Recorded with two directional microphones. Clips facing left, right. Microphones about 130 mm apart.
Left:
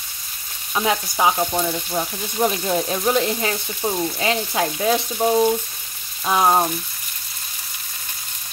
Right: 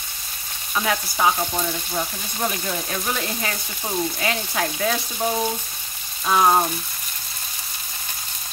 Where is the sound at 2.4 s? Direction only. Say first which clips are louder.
Left 6 dB; 15° left (ahead or behind).